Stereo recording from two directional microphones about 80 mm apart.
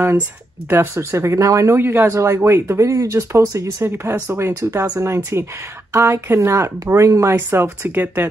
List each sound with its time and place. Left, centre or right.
0.7 s speech: right